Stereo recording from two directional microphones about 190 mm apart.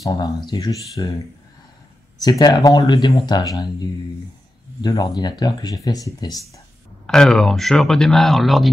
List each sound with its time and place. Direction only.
0.0 s speech: 20° left (ahead or behind)
2.1 s speech: 20° left (ahead or behind)
7.1 s speech: 5° left (ahead or behind)